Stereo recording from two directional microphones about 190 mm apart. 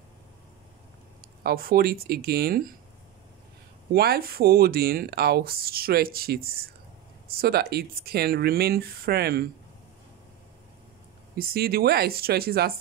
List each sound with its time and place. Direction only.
1.4 s speech: 50° right (ahead or behind)
3.9 s speech: 55° right (ahead or behind)
11.3 s speech: 50° right (ahead or behind)